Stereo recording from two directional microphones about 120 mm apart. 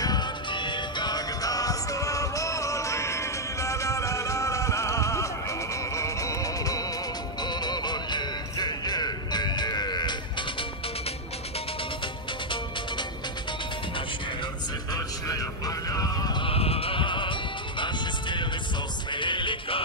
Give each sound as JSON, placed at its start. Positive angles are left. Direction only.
{"t": 0.0, "sound": "music", "side_deg": 35}
{"t": 15.2, "sound": "vehicle", "side_deg": 30}
{"t": 16.4, "sound": "music", "side_deg": 55}